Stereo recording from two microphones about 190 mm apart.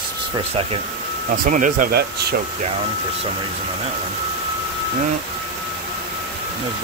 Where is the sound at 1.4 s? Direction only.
45° right (ahead or behind).